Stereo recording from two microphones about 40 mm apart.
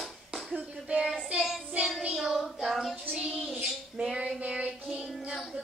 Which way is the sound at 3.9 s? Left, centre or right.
Centre.